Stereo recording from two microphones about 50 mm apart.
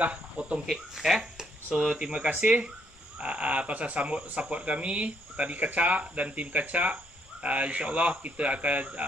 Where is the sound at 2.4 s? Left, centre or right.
Right.